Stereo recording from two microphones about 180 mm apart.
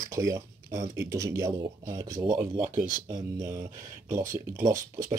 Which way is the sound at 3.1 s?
20° right (ahead or behind).